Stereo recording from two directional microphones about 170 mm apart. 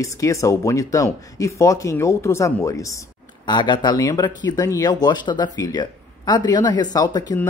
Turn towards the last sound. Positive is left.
turn(degrees=25)  # may be behind; listen again after turning